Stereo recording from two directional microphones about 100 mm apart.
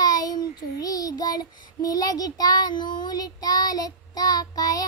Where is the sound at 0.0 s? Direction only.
40° left (ahead or behind).